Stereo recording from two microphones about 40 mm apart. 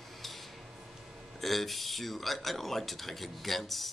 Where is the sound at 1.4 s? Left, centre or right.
Centre.